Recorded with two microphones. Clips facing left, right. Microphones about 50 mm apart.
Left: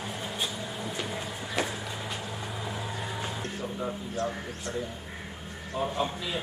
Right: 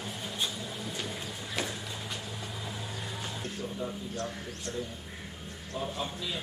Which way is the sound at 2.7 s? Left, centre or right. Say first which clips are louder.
Left 4 dB; left.